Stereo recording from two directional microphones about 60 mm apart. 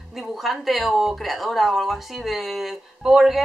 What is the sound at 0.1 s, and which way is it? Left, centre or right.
Speech, centre.